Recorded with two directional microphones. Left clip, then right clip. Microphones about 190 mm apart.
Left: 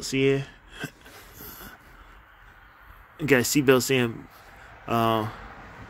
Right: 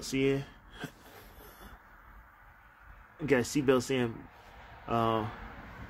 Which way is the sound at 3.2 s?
35° left (ahead or behind).